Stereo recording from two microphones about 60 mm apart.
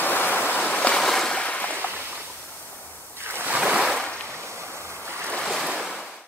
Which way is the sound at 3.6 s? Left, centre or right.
Centre.